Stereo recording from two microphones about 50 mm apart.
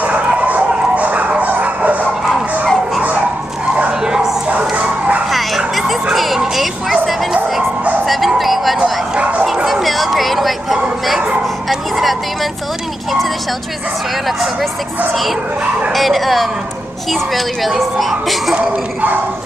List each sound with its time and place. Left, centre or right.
0.3 s bow-wow: right
2.6 s music: right
4.0 s bow-wow: centre
6.1 s music: centre
8.3 s vehicle: centre
9.1 s bow-wow: centre
9.7 s a sound: centre
15.9 s speech: centre